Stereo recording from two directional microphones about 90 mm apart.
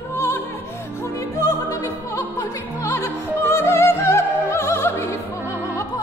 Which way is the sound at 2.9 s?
25° left (ahead or behind).